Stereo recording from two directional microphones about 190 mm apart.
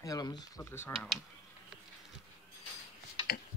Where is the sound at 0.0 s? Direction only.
20° left (ahead or behind).